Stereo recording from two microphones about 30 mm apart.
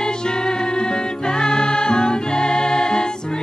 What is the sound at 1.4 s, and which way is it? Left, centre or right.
Music, left.